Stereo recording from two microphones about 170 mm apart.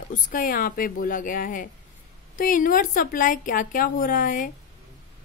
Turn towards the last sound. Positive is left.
turn(degrees=55)  # may be behind; listen again after turning